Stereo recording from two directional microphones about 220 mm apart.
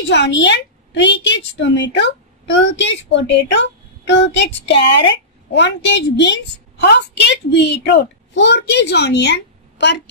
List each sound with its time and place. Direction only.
0.1 s a woman's voice: 50° left (ahead or behind)